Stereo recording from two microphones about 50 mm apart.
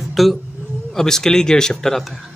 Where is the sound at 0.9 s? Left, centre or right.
Centre.